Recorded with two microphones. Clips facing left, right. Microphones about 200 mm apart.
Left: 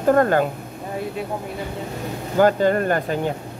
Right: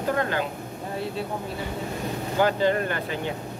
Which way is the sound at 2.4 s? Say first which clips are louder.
Left 6 dB; 45° left (ahead or behind).